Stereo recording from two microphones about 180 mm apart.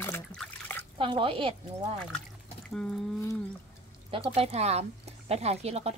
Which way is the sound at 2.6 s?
5° left (ahead or behind).